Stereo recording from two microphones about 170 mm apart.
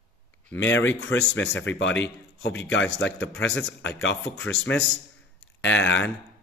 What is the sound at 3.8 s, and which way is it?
Speech, 90° left.